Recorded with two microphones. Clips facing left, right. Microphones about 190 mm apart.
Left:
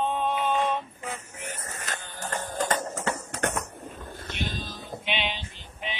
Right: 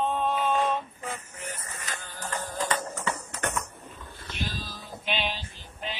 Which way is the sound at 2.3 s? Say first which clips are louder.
Left 2 dB; 45° left (ahead or behind).